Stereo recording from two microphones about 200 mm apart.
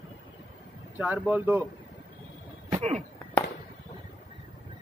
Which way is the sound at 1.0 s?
10° right (ahead or behind).